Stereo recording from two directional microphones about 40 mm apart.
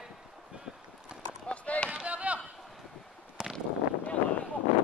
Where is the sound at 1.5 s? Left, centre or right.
Left.